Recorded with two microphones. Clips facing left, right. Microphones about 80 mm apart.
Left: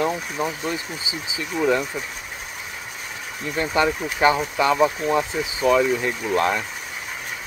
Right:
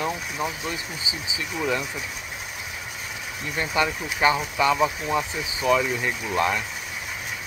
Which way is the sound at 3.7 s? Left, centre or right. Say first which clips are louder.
Left 4 dB; left.